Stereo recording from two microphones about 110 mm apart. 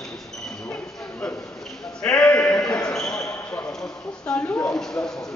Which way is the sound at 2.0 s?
10° left (ahead or behind).